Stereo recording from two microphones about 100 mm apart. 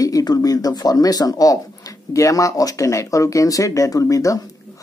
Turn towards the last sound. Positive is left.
turn(degrees=35)  # may be behind; listen again after turning